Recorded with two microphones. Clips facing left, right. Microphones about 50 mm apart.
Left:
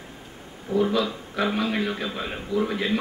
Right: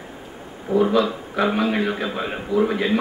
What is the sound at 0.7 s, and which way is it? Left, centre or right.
A man's voice, centre.